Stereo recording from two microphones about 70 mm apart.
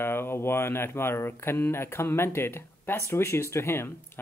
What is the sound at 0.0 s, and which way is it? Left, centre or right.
Speech, left.